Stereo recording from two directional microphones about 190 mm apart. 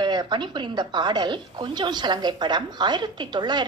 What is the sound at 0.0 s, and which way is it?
A woman's voice, 25° right (ahead or behind).